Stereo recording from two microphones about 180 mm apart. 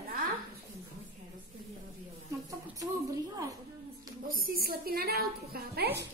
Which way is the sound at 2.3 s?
15° right (ahead or behind).